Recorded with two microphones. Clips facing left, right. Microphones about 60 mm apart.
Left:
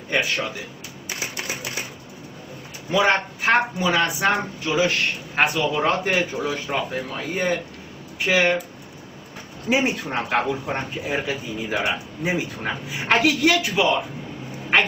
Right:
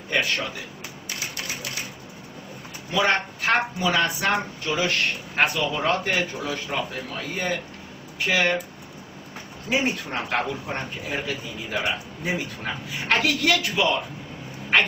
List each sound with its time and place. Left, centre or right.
1.2 s typewriter: left
2.9 s a man's voice: centre
9.7 s a man's voice: centre